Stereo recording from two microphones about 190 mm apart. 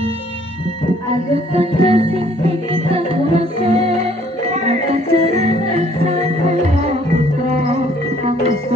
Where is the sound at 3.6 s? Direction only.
30° right (ahead or behind).